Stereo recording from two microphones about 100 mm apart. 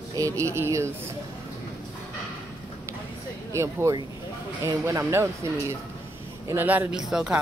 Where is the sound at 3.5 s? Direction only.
30° right (ahead or behind).